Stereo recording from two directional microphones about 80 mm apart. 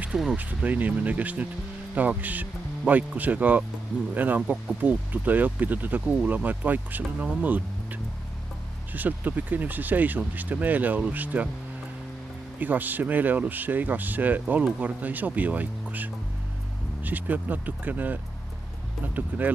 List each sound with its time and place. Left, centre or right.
0.1 s speech: centre
0.4 s speech: centre
12.5 s speech: right